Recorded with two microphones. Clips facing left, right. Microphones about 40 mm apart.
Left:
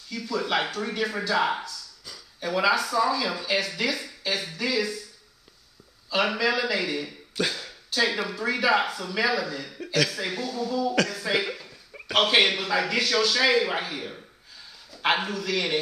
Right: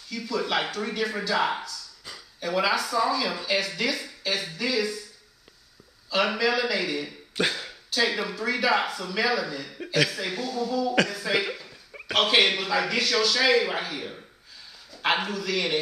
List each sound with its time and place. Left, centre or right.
0.1 s a man's voice: centre
6.0 s a man's voice: centre
7.3 s speech: centre
7.9 s a man's voice: centre